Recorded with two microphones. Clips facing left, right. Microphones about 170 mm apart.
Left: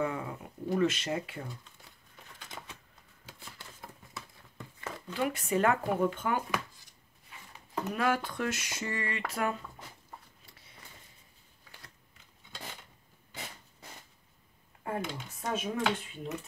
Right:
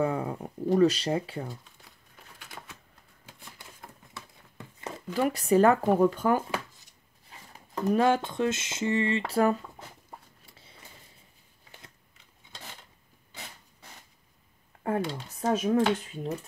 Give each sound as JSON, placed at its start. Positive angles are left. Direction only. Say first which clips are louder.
{"t": 0.0, "sound": "speech", "louder": "right 5 dB", "side_deg": -35}
{"t": 4.7, "sound": "a sound", "louder": "right 3 dB", "side_deg": -20}
{"t": 5.1, "sound": "speech", "louder": "right 7 dB", "side_deg": -40}
{"t": 14.8, "sound": "speech", "louder": "right 6 dB", "side_deg": -35}